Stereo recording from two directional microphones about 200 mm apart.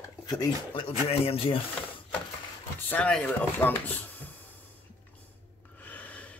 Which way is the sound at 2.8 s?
10° left (ahead or behind).